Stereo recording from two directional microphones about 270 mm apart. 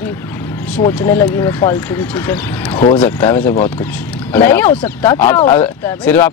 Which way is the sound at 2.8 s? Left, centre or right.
Left.